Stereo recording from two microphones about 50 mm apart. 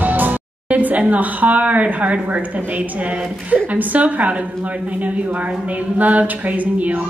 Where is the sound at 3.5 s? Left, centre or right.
Right.